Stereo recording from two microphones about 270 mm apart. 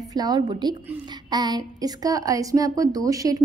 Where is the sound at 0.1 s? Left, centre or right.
Centre.